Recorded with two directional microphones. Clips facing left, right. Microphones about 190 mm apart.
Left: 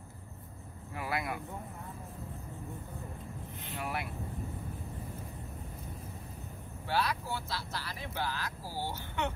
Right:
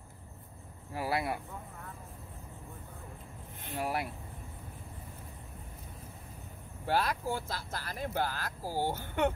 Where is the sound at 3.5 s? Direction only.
50° right (ahead or behind).